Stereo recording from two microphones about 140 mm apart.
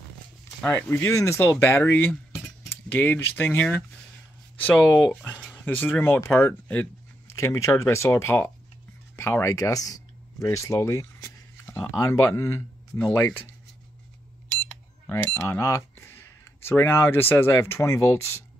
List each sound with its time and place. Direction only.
0.6 s speech: 15° left (ahead or behind)
9.1 s a sound: 15° left (ahead or behind)
12.0 s speech: 20° left (ahead or behind)
14.7 s speech: 10° left (ahead or behind)